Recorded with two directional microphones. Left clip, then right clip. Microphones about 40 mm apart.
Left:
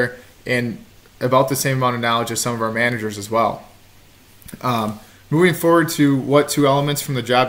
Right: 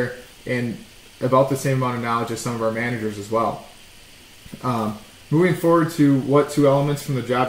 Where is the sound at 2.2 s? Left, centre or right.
Left.